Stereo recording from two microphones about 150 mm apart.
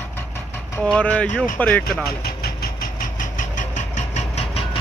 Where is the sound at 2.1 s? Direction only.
90° left.